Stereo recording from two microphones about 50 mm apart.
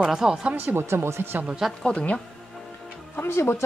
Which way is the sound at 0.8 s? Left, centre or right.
Right.